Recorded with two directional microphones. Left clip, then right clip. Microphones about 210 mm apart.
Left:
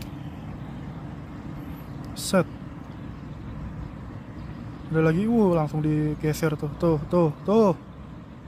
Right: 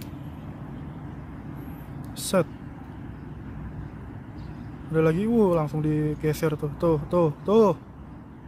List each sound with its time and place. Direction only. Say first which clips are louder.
2.1 s speech: even; centre (ahead or behind)
4.9 s speech: right 1 dB; centre (ahead or behind)